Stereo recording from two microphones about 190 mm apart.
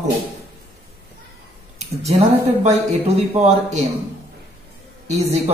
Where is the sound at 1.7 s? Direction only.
35° right (ahead or behind).